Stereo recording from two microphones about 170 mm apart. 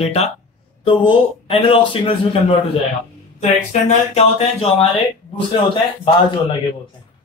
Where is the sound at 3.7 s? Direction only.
40° left (ahead or behind).